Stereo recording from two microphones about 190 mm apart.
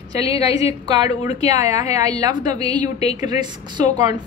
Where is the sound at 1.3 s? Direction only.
35° left (ahead or behind).